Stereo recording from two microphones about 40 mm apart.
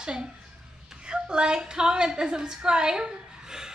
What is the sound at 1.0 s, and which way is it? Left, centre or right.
A woman's voice, right.